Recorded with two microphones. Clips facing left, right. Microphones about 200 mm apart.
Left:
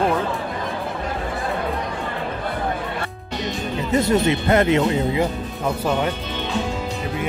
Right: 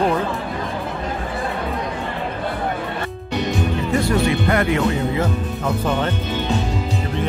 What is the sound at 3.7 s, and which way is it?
Speech, 20° left (ahead or behind).